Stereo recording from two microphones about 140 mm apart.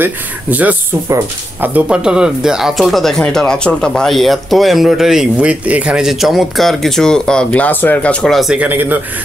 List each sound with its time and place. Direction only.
0.0 s speech: 10° right (ahead or behind)
1.0 s speech: 20° right (ahead or behind)
1.7 s speech: 5° right (ahead or behind)